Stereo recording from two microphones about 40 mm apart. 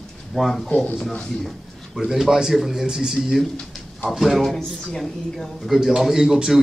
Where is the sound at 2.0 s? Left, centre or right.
Centre.